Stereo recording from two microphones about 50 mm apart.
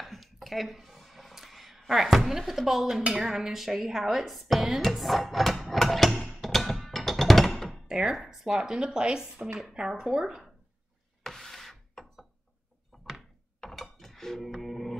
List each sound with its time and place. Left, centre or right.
0.0 s a sound: centre
3.0 s speech: centre
7.7 s speech: centre
11.2 s wood: centre
12.9 s door: centre
13.6 s dishes: centre
14.4 s music: centre